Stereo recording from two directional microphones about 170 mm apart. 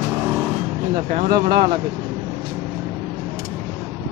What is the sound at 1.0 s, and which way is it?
Speech, 50° right (ahead or behind).